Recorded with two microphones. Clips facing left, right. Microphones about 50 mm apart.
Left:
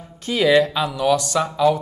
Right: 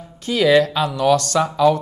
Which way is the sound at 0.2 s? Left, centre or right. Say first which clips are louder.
Right 1 dB; left.